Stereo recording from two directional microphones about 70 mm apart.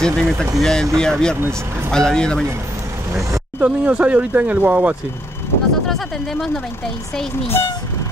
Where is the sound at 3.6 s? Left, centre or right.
Centre.